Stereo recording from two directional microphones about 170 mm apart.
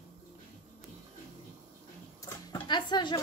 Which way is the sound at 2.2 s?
25° left (ahead or behind).